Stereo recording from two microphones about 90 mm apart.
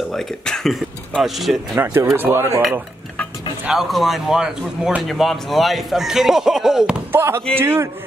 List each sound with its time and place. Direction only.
0.1 s a man's voice: 5° left (ahead or behind)
1.8 s speech: 25° right (ahead or behind)
3.7 s a man's voice: centre (ahead or behind)
7.1 s speech: 30° right (ahead or behind)